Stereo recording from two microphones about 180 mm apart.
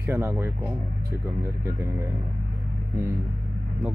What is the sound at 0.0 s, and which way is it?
Speech, 15° right (ahead or behind).